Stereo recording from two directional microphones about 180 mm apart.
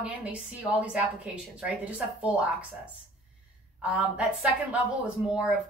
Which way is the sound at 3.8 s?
5° right (ahead or behind).